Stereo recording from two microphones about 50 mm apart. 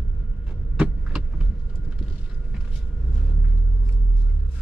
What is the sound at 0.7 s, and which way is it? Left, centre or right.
Vehicle, centre.